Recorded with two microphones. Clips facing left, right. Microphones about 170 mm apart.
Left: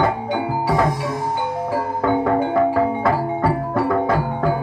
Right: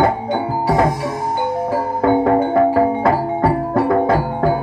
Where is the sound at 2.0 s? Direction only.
35° right (ahead or behind).